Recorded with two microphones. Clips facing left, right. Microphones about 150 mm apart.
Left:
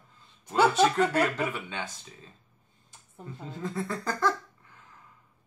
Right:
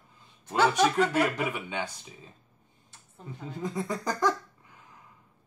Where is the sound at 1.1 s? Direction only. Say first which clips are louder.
Even; 10° right (ahead or behind).